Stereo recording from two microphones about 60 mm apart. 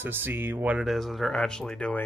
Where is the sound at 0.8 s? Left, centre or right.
Centre.